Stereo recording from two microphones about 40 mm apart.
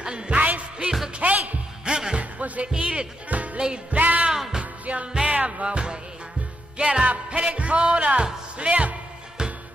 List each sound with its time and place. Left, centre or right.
0.0 s music: right
0.4 s music: right
1.9 s music: centre
2.1 s music: right
4.3 s music: centre
4.8 s music: right
7.1 s speech: right
9.4 s music: right